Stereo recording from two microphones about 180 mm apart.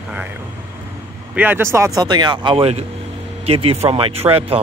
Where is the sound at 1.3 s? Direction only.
10° right (ahead or behind).